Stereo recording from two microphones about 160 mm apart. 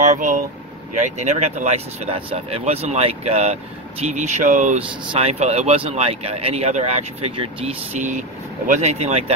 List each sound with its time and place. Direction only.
0.0 s speech: 50° right (ahead or behind)
4.7 s speech: 40° right (ahead or behind)